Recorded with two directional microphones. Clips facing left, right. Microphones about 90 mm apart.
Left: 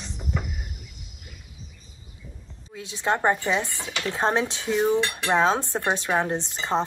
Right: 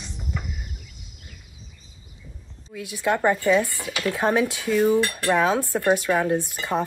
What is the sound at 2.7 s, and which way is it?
Speech, 25° left (ahead or behind).